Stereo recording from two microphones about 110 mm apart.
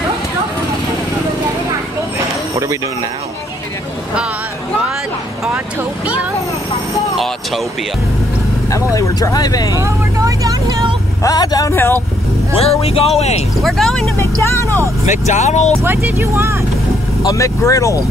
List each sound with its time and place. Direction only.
2.5 s speech: 30° right (ahead or behind)
8.9 s speech: 30° left (ahead or behind)
9.8 s speech: 30° right (ahead or behind)
11.2 s speech: 35° left (ahead or behind)
11.7 s speech: 20° left (ahead or behind)
12.5 s speech: 65° left (ahead or behind)
13.6 s speech: centre (ahead or behind)
14.4 s speech: 25° left (ahead or behind)
15.0 s speech: 90° left
15.8 s speech: 20° right (ahead or behind)
17.2 s speech: 30° left (ahead or behind)